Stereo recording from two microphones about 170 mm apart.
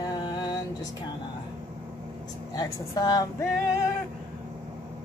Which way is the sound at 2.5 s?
20° left (ahead or behind).